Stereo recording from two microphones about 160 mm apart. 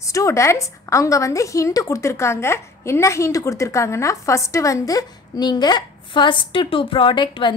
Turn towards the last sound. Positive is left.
turn(degrees=30)  # may be behind; listen again after turning